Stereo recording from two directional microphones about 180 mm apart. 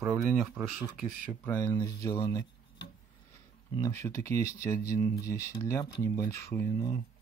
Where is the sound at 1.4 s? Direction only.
10° left (ahead or behind).